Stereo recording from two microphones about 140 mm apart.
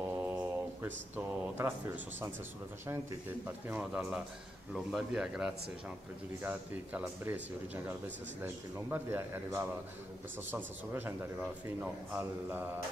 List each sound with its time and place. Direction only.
0.0 s a sound: 10° right (ahead or behind)
1.1 s speech: 15° right (ahead or behind)
3.4 s speech: 10° right (ahead or behind)